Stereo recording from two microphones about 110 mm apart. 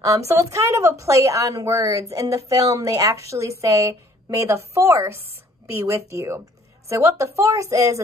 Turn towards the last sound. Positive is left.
turn(degrees=-30)  # may be behind; listen again after turning